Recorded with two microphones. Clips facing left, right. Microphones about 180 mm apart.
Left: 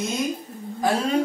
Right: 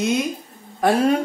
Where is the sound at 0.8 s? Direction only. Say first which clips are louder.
Right 5 dB; 60° right (ahead or behind).